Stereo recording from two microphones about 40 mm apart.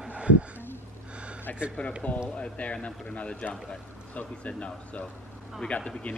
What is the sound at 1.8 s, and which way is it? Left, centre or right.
A man's voice, left.